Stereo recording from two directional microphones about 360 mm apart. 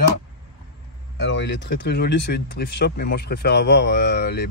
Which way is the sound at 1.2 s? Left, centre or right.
Left.